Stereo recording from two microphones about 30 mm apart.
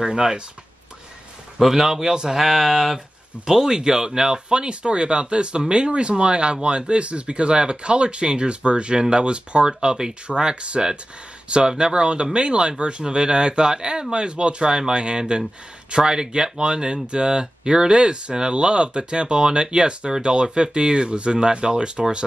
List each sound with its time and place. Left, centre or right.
0.0 s speech: right
1.6 s speech: centre
1.9 s speech: right
2.3 s speech: centre
3.7 s speech: right